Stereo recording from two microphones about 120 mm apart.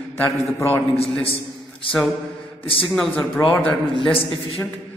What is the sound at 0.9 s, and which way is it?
Speech, 55° left (ahead or behind).